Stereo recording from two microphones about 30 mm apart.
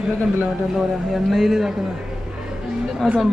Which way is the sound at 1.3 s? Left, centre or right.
Centre.